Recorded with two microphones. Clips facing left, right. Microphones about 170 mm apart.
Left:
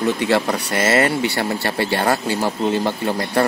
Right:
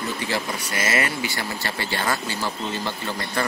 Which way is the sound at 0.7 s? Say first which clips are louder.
Left 8 dB; 30° left (ahead or behind).